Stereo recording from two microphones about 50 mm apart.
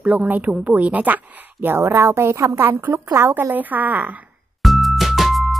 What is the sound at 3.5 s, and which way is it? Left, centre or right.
Speech, right.